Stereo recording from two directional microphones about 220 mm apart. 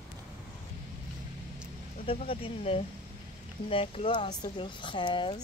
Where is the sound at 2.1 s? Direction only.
25° left (ahead or behind).